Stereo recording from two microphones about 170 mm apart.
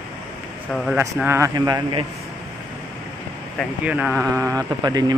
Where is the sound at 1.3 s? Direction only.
20° right (ahead or behind).